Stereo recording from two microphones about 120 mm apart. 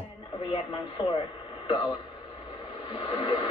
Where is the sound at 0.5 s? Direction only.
45° left (ahead or behind).